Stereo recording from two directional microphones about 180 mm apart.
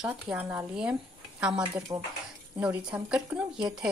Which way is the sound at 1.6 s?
25° right (ahead or behind).